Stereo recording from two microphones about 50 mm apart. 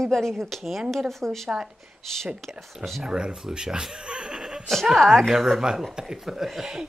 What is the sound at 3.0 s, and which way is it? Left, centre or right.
Speech, centre.